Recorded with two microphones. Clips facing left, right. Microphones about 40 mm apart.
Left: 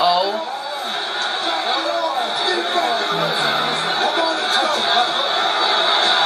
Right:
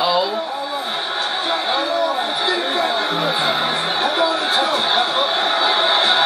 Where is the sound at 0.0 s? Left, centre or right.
Centre.